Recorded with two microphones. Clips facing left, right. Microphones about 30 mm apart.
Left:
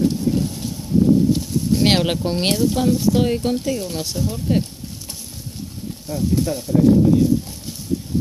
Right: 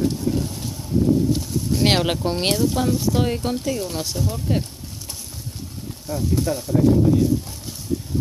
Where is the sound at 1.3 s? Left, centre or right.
Left.